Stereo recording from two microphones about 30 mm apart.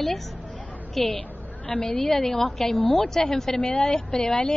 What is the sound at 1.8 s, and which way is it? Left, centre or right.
Speech, left.